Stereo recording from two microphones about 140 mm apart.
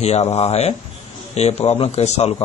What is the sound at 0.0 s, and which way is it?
Speech, 50° left (ahead or behind).